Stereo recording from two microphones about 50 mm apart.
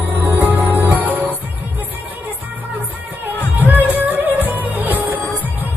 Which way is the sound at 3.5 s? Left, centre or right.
Right.